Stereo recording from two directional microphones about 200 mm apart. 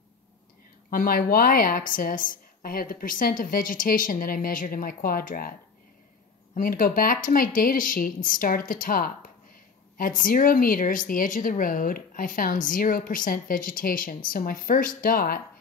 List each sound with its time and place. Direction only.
0.8 s a woman's voice: 45° left (ahead or behind)